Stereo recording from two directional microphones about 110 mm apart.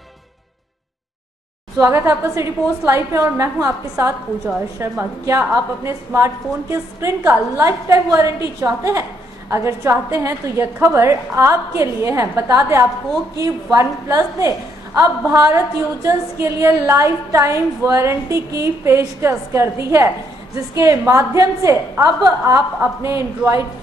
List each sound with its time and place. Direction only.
1.8 s a woman's voice: 25° right (ahead or behind)
15.0 s a woman's voice: 30° right (ahead or behind)